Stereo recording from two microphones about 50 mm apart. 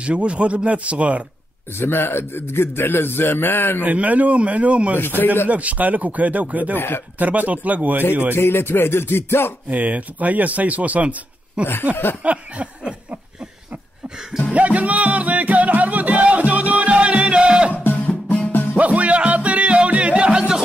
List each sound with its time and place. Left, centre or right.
0.0 s a man's voice: right
1.8 s a man's voice: left
3.8 s a man's voice: right
8.4 s a man's voice: left
9.7 s a man's voice: right
12.2 s a sound: right
14.5 s music: right
18.0 s music: centre
18.5 s music: left
18.8 s music: right